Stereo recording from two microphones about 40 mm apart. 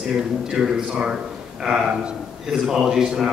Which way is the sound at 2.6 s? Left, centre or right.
Centre.